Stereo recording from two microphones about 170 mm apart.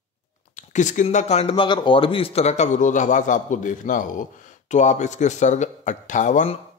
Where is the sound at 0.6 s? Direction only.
45° left (ahead or behind).